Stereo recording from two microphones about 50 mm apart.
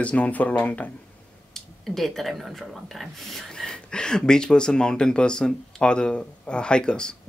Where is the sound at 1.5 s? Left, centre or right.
Centre.